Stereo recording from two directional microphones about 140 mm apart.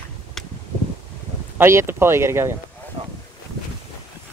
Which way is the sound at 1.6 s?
20° right (ahead or behind).